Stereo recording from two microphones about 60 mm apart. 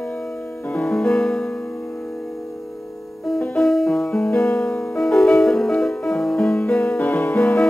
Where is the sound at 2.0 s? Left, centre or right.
Centre.